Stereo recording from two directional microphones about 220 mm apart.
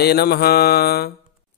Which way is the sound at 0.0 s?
45° left (ahead or behind).